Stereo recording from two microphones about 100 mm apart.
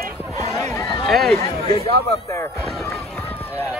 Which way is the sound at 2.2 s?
30° left (ahead or behind).